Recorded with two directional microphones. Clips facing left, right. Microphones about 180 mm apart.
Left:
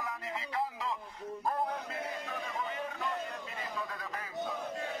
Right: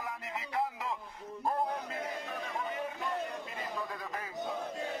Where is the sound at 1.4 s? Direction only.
15° right (ahead or behind).